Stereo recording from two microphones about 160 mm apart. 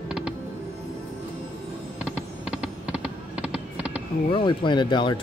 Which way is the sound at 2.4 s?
5° right (ahead or behind).